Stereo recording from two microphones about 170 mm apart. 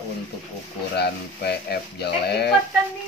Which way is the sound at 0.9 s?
75° left (ahead or behind).